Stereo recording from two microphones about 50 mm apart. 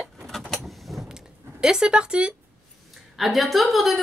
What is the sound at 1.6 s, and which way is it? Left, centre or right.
Speech, centre.